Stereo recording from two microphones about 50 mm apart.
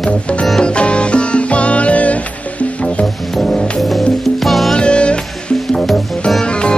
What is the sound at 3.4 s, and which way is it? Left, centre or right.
Music, centre.